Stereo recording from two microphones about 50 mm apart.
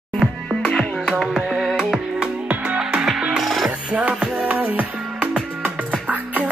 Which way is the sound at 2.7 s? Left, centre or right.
Centre.